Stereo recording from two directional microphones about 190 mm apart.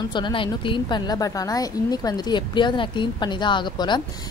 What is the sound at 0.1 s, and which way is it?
A woman's voice, 25° left (ahead or behind).